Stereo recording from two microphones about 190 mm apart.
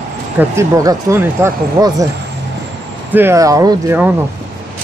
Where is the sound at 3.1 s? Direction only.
15° right (ahead or behind).